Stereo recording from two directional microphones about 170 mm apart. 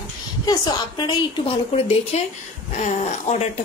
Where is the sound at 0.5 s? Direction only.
25° left (ahead or behind); by 3.4 s 40° left (ahead or behind).